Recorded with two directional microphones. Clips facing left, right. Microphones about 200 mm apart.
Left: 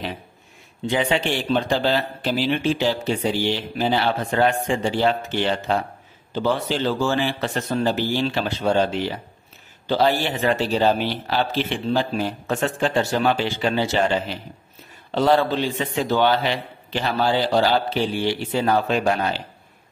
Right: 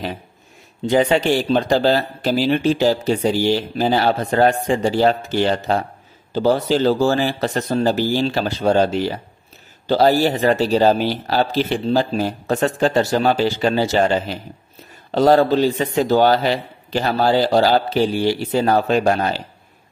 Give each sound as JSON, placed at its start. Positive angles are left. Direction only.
{"t": 0.8, "sound": "speech", "side_deg": -40}